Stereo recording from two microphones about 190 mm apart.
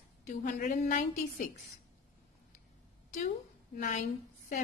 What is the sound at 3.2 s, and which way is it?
A woman's voice, 40° left (ahead or behind).